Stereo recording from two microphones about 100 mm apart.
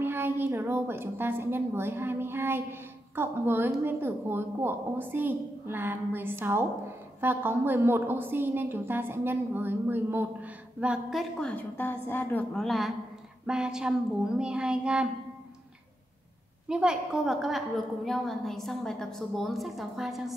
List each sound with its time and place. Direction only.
0.0 s a woman's voice: 20° right (ahead or behind); by 11.2 s 5° right (ahead or behind)
11.3 s a woman's voice: 10° left (ahead or behind)
11.7 s a woman's voice: 20° left (ahead or behind)
12.5 s a woman's voice: centre (ahead or behind)
16.6 s a woman's voice: 10° right (ahead or behind)